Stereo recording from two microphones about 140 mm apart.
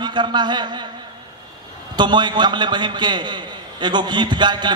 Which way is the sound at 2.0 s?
30° right (ahead or behind).